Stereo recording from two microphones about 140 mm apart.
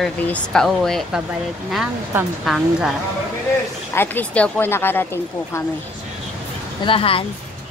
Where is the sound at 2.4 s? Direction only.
Centre (ahead or behind).